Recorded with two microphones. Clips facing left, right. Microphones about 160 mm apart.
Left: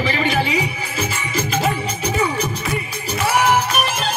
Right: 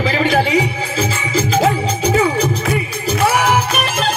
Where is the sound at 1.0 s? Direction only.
90° right.